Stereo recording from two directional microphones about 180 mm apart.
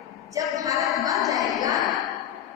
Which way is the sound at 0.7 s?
Centre (ahead or behind).